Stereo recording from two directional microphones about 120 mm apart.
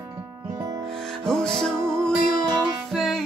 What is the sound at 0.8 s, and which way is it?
Music, 5° left (ahead or behind).